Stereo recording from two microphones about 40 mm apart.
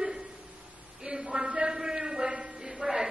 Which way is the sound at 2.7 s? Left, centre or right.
Centre.